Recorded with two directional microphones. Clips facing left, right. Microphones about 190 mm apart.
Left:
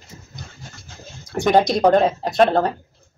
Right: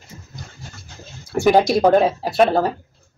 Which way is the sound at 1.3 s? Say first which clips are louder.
Right 2 dB; 5° right (ahead or behind).